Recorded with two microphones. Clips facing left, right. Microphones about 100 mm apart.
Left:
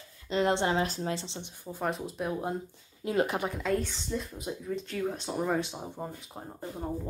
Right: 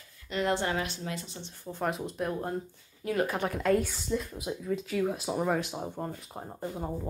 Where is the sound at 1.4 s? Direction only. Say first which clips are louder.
Even; 15° left (ahead or behind).